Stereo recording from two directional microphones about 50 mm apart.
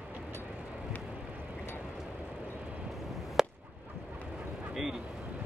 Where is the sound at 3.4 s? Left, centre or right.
Centre.